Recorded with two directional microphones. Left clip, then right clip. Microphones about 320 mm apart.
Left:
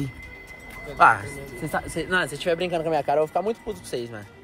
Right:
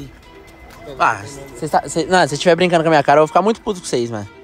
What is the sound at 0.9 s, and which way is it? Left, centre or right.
Speech, centre.